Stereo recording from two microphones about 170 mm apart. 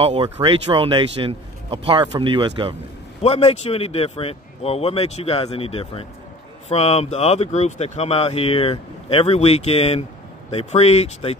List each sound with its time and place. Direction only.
0.0 s speech: 30° right (ahead or behind)
3.2 s speech: 40° left (ahead or behind)